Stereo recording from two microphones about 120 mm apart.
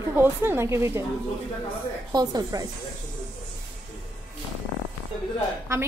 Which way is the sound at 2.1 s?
30° right (ahead or behind).